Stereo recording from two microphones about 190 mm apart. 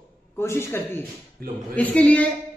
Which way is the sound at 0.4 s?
15° left (ahead or behind).